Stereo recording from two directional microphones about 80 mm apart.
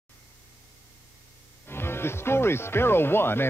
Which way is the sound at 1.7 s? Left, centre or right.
Left.